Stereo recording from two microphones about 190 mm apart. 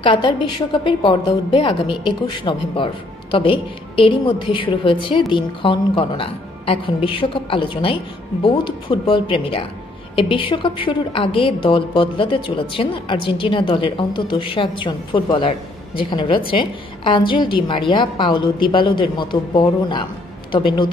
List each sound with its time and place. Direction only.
0.0 s a woman's voice: 25° left (ahead or behind)